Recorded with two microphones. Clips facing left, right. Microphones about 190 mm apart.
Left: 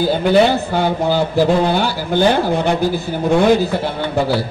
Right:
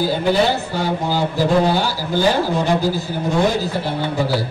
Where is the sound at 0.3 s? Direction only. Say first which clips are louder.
Left 6 dB; 60° left (ahead or behind).